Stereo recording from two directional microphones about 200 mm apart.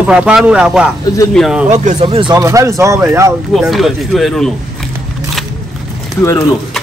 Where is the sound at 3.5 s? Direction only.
Centre (ahead or behind).